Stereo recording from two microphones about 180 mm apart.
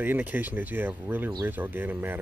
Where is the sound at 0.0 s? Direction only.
10° right (ahead or behind).